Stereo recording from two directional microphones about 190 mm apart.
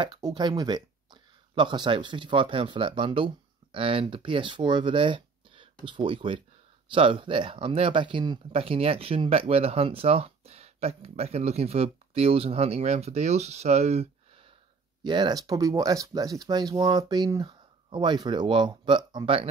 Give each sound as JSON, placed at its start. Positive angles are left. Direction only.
{"t": 0.0, "sound": "speech", "side_deg": -25}
{"t": 15.0, "sound": "speech", "side_deg": -20}